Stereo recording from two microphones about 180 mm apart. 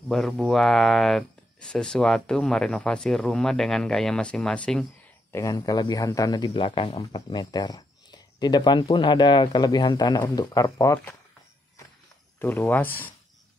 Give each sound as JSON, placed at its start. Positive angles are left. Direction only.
{"t": 0.1, "sound": "speech", "side_deg": 0}
{"t": 5.3, "sound": "speech", "side_deg": 20}
{"t": 12.4, "sound": "speech", "side_deg": 10}